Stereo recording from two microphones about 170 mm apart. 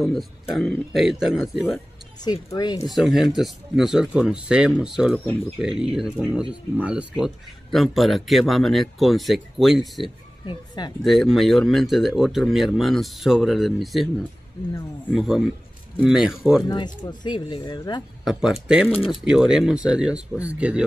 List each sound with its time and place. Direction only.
0.1 s speech: centre (ahead or behind)
2.2 s speech: 25° left (ahead or behind)
2.9 s speech: centre (ahead or behind)
10.4 s speech: 25° left (ahead or behind)
11.1 s speech: centre (ahead or behind)
14.7 s speech: 15° left (ahead or behind)
15.1 s speech: centre (ahead or behind)
16.6 s speech: 25° left (ahead or behind)
18.2 s speech: 5° right (ahead or behind)
18.9 s speech: 35° left (ahead or behind)
19.3 s speech: 5° right (ahead or behind)